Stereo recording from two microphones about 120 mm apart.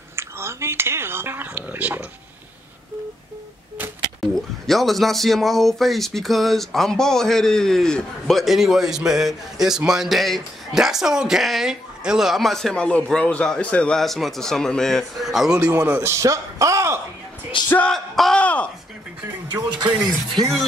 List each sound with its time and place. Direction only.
0.1 s speech: 20° right (ahead or behind)
4.4 s speech: centre (ahead or behind)
15.7 s a man's voice: 20° right (ahead or behind)
17.6 s a sound: 15° left (ahead or behind)
17.9 s a sound: centre (ahead or behind)
19.9 s speech: 10° right (ahead or behind)